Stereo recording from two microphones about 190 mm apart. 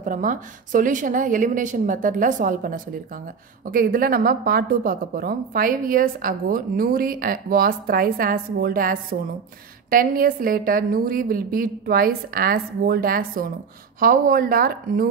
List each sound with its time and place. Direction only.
0.0 s a woman's voice: 45° right (ahead or behind)